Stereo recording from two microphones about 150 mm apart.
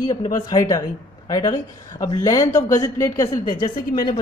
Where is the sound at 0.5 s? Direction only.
20° left (ahead or behind).